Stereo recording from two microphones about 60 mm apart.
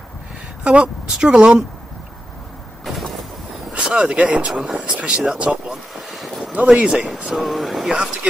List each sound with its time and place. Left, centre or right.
1.1 s speech: centre
2.8 s vehicle: centre
3.7 s speech: centre
6.5 s speech: right
7.2 s speech: centre
7.9 s speech: centre